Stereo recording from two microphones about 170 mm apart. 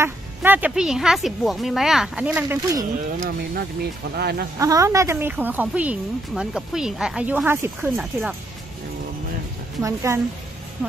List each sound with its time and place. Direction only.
0.0 s speech: 10° right (ahead or behind)
3.3 s speech: 65° right (ahead or behind)
4.6 s speech: 20° right (ahead or behind)
9.8 s speech: 15° right (ahead or behind)